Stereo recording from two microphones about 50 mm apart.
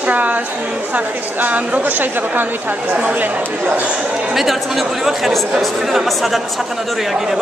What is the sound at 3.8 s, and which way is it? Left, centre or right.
Speech, centre.